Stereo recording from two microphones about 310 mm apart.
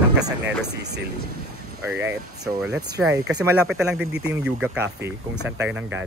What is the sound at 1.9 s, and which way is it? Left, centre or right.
Speech, centre.